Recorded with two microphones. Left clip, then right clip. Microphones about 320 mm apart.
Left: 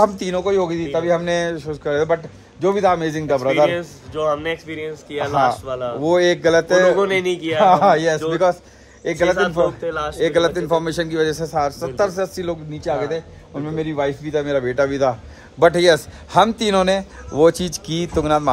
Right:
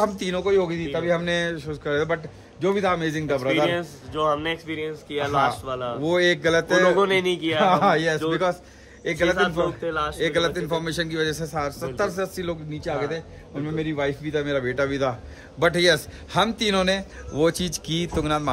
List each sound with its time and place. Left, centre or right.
0.0 s a man's voice: centre
3.6 s a man's voice: centre
5.3 s a man's voice: centre
5.7 s a man's voice: centre
5.9 s a man's voice: centre
7.0 s a man's voice: centre
7.6 s a man's voice: centre
10.1 s a man's voice: centre